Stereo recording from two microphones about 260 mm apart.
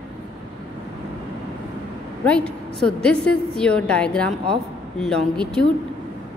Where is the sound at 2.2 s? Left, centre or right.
Centre.